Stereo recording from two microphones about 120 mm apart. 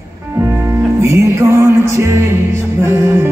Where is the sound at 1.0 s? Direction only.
25° right (ahead or behind).